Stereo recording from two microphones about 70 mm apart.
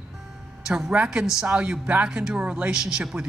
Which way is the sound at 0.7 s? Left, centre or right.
Centre.